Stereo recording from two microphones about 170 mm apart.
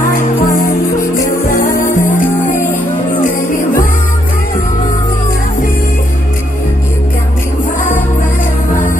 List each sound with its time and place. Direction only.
1.8 s music: 50° left (ahead or behind)